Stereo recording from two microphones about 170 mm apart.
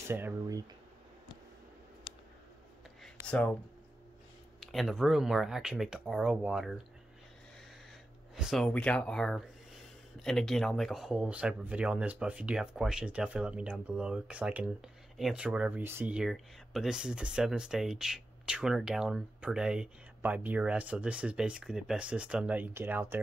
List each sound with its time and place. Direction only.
0.1 s speech: 15° right (ahead or behind)
3.3 s speech: 5° left (ahead or behind)
4.6 s speech: centre (ahead or behind)
8.4 s speech: centre (ahead or behind)